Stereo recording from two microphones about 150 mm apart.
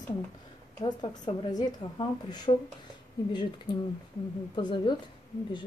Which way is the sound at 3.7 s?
30° left (ahead or behind).